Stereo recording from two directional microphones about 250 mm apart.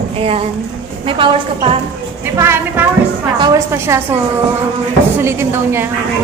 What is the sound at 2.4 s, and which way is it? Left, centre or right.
A woman's voice, centre.